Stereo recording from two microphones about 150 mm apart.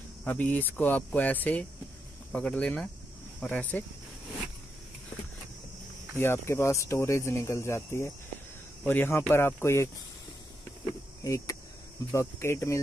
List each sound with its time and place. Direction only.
0.2 s speech: 10° left (ahead or behind)
6.1 s speech: 15° left (ahead or behind)
11.2 s cricket: 20° left (ahead or behind)
12.1 s speech: 15° left (ahead or behind)